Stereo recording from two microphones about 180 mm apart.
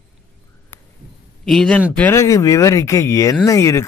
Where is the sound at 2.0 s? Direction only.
15° left (ahead or behind).